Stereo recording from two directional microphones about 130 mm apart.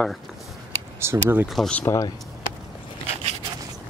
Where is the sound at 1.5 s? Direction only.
5° left (ahead or behind).